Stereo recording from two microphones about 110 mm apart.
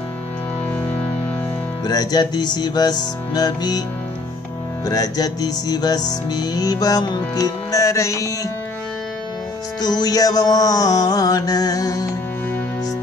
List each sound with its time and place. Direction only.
1.9 s music: 35° left (ahead or behind)
4.8 s music: 35° left (ahead or behind)
9.8 s music: 35° left (ahead or behind)